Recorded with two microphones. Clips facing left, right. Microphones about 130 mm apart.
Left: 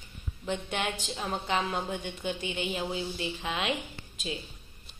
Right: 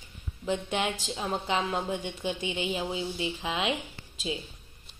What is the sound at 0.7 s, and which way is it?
Speech, 20° right (ahead or behind).